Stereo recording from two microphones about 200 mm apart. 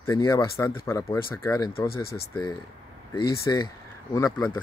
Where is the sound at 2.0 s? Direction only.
50° left (ahead or behind).